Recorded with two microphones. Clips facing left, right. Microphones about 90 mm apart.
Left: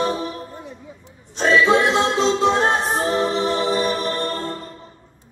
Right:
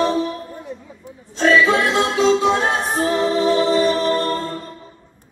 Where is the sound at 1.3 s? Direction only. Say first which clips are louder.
Right 1 dB; 20° left (ahead or behind).